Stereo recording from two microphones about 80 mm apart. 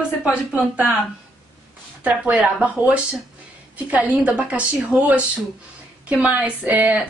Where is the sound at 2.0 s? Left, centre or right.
Centre.